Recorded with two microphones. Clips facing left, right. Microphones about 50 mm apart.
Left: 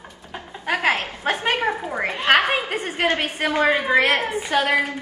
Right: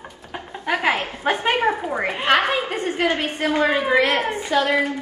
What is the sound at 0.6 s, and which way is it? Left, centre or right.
Speech, centre.